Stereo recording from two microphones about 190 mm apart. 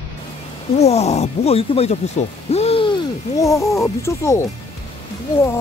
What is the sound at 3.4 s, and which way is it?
Speech, 15° left (ahead or behind).